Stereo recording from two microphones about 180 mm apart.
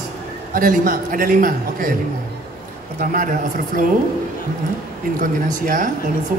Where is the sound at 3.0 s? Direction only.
50° right (ahead or behind).